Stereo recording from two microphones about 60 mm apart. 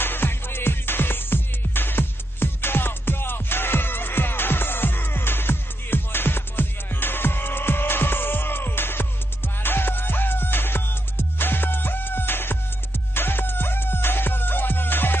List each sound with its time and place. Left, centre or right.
0.0 s music: left